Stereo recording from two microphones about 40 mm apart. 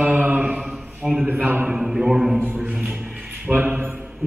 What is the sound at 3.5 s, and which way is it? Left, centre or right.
Speech, right.